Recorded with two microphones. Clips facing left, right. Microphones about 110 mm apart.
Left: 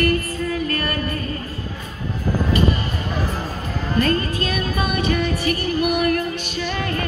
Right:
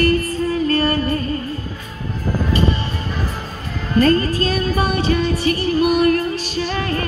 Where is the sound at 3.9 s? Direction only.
35° right (ahead or behind).